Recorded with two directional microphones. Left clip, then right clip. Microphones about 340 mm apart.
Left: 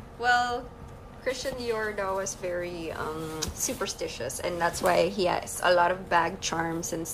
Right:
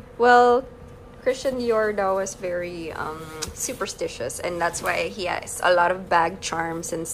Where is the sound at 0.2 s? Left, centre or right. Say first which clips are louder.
Right 10 dB; centre.